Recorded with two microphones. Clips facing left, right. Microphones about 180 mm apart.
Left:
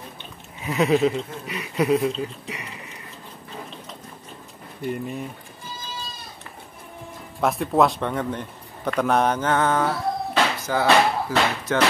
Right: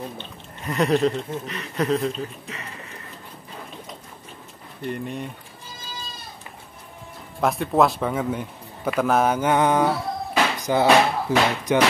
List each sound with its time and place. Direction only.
0.6 s speech: centre (ahead or behind)
2.4 s a sound: 15° left (ahead or behind)
4.8 s speech: 5° left (ahead or behind)
7.3 s speech: centre (ahead or behind); by 11.8 s 20° right (ahead or behind)